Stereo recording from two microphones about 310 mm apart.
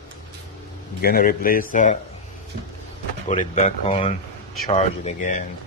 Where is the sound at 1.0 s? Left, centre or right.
Left.